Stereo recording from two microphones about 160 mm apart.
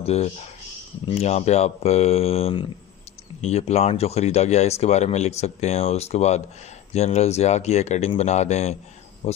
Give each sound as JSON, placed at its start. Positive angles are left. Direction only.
{"t": 0.0, "sound": "speech", "side_deg": 40}
{"t": 9.2, "sound": "cricket", "side_deg": 40}